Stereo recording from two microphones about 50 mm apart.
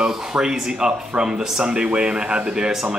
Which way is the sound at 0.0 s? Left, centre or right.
Centre.